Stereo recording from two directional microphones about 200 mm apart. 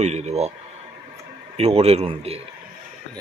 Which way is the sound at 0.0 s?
35° right (ahead or behind).